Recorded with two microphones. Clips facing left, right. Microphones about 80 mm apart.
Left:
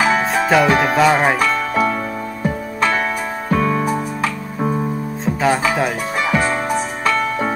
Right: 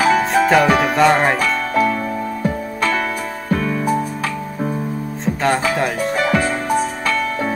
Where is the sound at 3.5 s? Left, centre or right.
Left.